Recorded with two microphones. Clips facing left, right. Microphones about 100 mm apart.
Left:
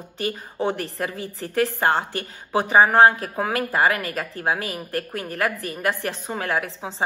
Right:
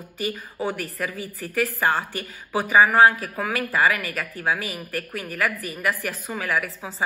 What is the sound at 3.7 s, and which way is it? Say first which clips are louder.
A woman's voice: even; 40° left (ahead or behind).